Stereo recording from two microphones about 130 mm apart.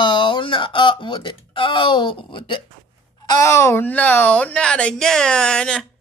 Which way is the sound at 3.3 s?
25° left (ahead or behind).